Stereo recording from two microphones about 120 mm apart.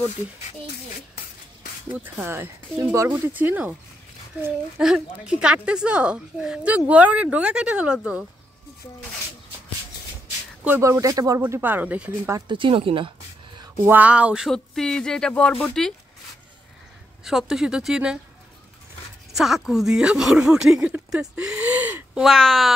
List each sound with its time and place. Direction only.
2.1 s a woman's voice: 20° right (ahead or behind)
4.7 s a woman's voice: 5° right (ahead or behind)
10.8 s speech: 25° right (ahead or behind)
12.3 s speech: 30° right (ahead or behind)
12.5 s speech: 45° right (ahead or behind)
13.7 s a woman's voice: 15° right (ahead or behind)
14.5 s speech: 5° left (ahead or behind)
17.2 s speech: 5° right (ahead or behind)
19.3 s speech: 5° right (ahead or behind)
22.2 s speech: centre (ahead or behind)